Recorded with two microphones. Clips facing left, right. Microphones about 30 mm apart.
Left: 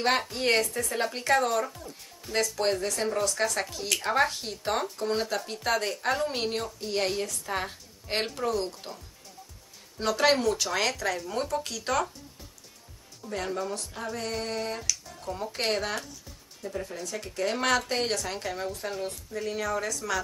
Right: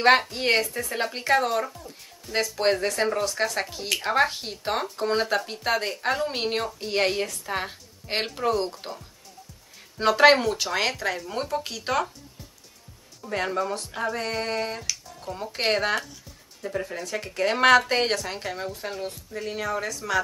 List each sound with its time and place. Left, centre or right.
0.0 s a woman's voice: centre
6.5 s speech: right
7.4 s speech: centre
9.9 s speech: right
10.3 s a woman's voice: centre
13.3 s speech: right
18.2 s a woman's voice: centre